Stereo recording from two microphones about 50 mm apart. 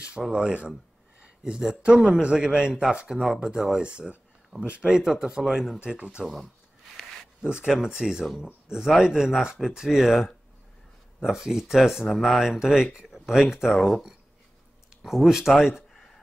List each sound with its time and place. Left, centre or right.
0.3 s a man's voice: centre
3.8 s a sound: right
4.6 s a man's voice: right
5.1 s speech: centre
5.8 s speech: right
7.4 s speech: centre
12.4 s speech: centre
15.0 s speech: centre